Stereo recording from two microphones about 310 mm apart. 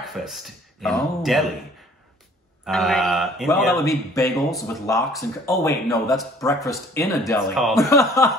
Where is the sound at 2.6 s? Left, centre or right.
Centre.